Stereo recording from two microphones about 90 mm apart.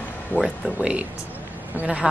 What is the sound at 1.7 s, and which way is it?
Speech, 15° right (ahead or behind).